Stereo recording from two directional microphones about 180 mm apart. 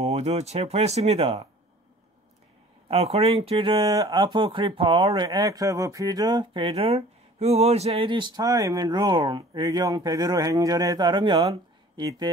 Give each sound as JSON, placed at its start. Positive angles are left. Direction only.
{"t": 0.0, "sound": "speech", "side_deg": -40}
{"t": 2.9, "sound": "speech", "side_deg": -35}